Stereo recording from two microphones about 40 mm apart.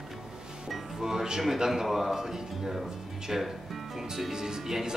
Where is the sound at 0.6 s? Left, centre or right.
Centre.